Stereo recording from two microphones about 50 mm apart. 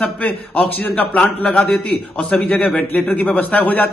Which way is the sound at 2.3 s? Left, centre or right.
Centre.